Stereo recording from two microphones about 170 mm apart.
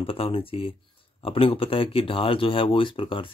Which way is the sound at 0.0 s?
35° left (ahead or behind).